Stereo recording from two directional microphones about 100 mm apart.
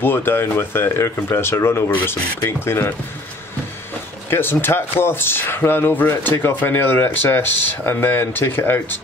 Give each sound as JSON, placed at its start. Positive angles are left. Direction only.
{"t": 0.0, "sound": "speech", "side_deg": 20}
{"t": 4.3, "sound": "speech", "side_deg": 20}